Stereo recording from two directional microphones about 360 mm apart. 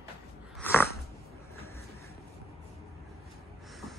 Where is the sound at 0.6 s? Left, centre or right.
Centre.